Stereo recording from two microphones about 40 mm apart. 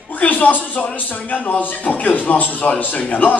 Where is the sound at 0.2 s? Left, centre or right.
Left.